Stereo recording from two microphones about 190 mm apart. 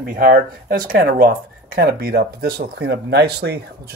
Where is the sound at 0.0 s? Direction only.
50° right (ahead or behind).